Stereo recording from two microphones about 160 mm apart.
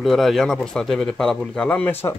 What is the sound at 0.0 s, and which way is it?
A man's voice, centre (ahead or behind).